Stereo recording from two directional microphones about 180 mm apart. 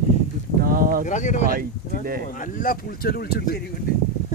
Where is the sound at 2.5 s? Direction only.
55° left (ahead or behind).